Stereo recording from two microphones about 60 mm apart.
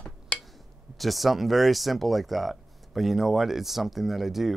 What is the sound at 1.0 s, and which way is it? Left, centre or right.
Speech, centre.